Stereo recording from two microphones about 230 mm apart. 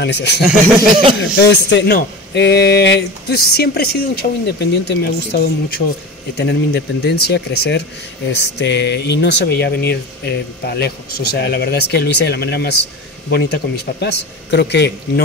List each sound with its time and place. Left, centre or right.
0.0 s speech: left
1.4 s speech: left